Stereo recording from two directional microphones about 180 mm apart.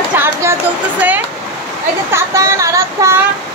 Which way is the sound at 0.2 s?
15° right (ahead or behind).